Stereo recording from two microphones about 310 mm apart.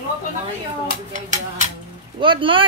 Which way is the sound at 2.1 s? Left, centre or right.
Centre.